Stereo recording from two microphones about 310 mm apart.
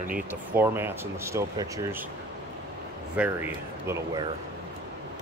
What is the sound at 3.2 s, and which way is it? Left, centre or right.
Speech, centre.